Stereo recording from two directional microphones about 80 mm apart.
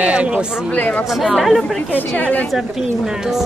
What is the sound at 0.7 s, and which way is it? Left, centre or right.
Speech, centre.